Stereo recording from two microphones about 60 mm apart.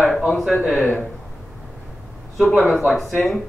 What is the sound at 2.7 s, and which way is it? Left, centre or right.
Speech, centre.